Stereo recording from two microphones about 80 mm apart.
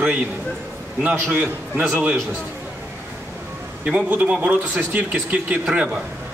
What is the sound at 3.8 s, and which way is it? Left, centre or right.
A man's voice, centre.